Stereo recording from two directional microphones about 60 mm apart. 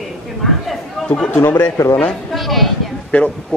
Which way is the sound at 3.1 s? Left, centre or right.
Left.